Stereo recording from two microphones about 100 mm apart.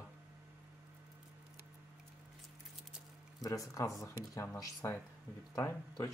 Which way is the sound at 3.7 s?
35° left (ahead or behind).